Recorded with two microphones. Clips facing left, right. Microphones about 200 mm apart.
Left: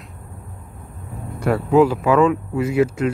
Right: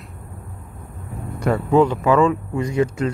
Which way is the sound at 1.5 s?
5° left (ahead or behind).